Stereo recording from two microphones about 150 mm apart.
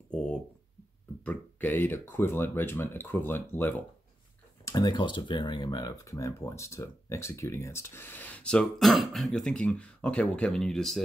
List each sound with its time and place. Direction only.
0.1 s a sound: 10° left (ahead or behind)
1.2 s speech: 10° left (ahead or behind)
4.6 s speech: 25° left (ahead or behind); by 11.0 s centre (ahead or behind)